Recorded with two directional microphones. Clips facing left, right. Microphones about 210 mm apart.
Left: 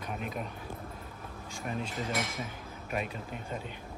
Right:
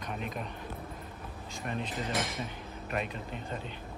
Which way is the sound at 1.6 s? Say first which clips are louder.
Even; centre (ahead or behind).